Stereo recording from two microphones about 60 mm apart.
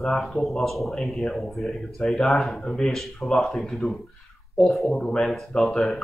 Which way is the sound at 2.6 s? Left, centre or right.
Centre.